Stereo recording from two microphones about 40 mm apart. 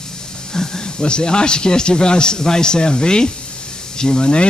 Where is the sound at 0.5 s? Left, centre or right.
Centre.